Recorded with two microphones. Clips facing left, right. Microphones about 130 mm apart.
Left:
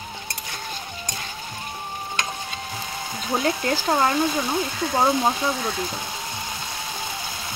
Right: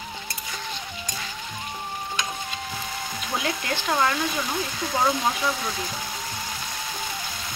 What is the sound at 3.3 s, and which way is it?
Speech, 35° left (ahead or behind).